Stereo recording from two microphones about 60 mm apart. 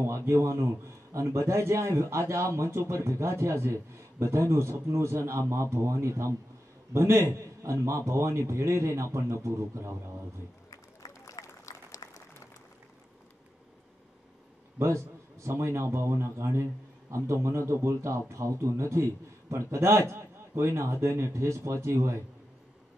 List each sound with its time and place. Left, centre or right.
0.0 s a man's voice: right
10.7 s a sound: left
14.8 s a man's voice: right